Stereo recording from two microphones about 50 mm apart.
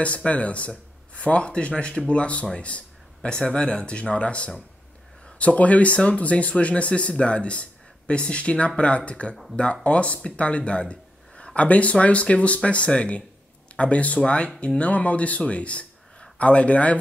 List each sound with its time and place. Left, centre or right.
0.0 s speech: left